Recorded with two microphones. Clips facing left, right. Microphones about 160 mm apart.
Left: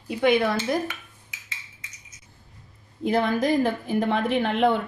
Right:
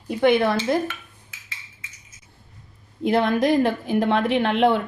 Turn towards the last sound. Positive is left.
turn(degrees=-85)